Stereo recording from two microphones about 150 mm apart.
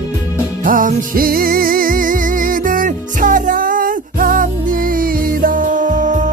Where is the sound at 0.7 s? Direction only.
65° right (ahead or behind).